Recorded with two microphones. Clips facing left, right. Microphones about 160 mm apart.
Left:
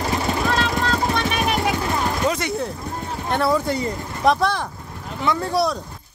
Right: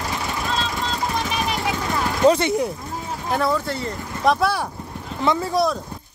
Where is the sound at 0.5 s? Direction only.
65° left (ahead or behind).